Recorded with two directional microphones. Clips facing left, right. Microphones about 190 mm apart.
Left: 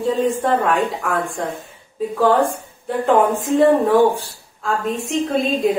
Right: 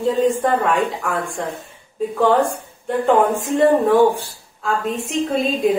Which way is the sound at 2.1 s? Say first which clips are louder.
Even; centre (ahead or behind).